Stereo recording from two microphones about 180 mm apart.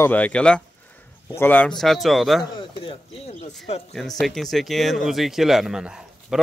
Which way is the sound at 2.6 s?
30° left (ahead or behind).